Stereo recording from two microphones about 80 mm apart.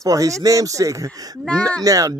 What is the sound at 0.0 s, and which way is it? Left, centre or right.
A man's voice, right.